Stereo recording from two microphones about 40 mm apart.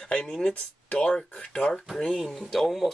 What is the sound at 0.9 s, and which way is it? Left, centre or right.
Speech, left.